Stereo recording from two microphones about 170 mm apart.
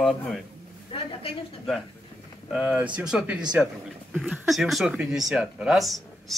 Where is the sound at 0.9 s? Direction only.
30° left (ahead or behind).